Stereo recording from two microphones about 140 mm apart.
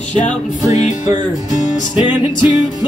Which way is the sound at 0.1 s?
55° left (ahead or behind).